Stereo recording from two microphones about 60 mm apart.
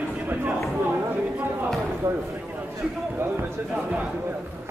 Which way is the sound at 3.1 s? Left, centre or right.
Right.